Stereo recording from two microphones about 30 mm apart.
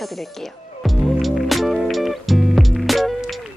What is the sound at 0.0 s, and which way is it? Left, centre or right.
Music, centre.